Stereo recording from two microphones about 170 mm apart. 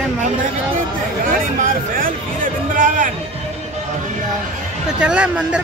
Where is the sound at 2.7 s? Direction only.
50° right (ahead or behind).